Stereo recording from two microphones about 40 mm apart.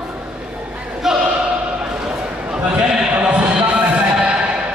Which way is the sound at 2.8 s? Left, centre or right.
Centre.